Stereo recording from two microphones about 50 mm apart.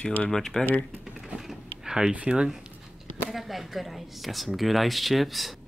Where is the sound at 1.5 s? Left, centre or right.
Centre.